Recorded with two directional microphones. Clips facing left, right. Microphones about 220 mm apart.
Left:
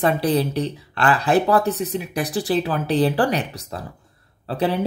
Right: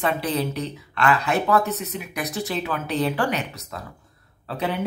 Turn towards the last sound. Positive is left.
turn(degrees=35)  # may be behind; listen again after turning